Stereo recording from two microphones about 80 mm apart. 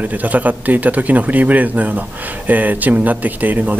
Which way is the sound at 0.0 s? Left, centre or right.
Centre.